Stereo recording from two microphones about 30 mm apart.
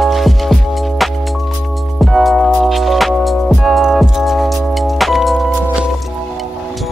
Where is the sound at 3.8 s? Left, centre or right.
Centre.